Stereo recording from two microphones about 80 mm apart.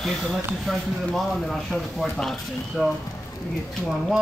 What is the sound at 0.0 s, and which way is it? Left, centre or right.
Speech, centre.